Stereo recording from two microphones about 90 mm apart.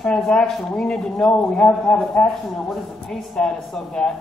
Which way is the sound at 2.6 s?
5° left (ahead or behind).